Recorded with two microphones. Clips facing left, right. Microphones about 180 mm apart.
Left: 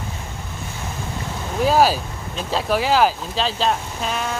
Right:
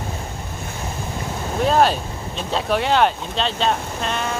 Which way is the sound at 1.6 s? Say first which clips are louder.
Left 1 dB; 5° left (ahead or behind).